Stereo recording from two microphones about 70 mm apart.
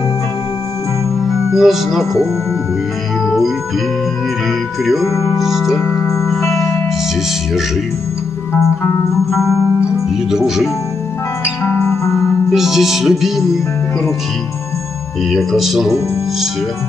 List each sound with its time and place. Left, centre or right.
1.5 s music: centre
3.3 s organ: centre
5.0 s speech: left
5.4 s music: centre
6.4 s music: left
10.3 s music: centre
11.6 s music: centre
11.9 s music: left
12.4 s music: centre
15.3 s music: centre